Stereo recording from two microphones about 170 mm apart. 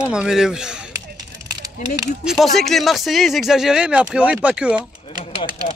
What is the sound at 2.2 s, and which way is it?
Speech, centre (ahead or behind).